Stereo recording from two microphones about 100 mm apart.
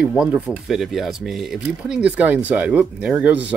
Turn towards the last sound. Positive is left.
turn(degrees=-15)  # may be behind; listen again after turning